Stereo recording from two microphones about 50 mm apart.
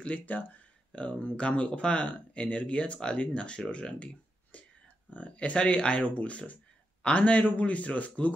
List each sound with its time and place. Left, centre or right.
0.0 s speech: left